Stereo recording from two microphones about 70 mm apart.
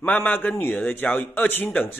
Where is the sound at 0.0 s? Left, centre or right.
Left.